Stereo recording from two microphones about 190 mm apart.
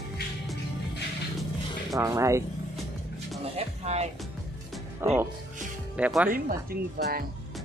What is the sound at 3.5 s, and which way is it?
Speech, 35° right (ahead or behind).